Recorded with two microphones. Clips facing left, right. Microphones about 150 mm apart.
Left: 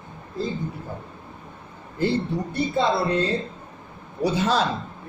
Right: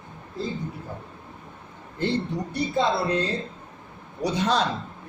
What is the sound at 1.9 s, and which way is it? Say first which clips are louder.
Speech: left 3 dB; 5° left (ahead or behind).